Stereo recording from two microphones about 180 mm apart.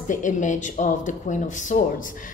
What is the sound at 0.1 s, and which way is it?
A woman's voice, 45° left (ahead or behind).